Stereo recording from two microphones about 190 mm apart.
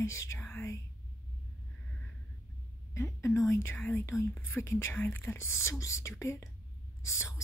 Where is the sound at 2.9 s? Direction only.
15° left (ahead or behind).